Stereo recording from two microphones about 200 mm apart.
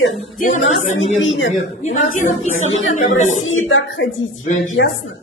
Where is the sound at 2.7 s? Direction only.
75° left (ahead or behind).